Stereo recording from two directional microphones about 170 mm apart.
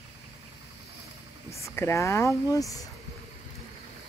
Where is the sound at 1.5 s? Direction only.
15° left (ahead or behind).